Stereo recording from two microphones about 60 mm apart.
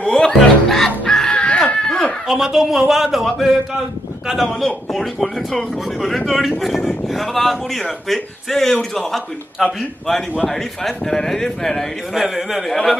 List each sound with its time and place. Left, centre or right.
0.2 s chicken: centre
2.2 s speech: centre
9.8 s a man's voice: centre
12.2 s speech: centre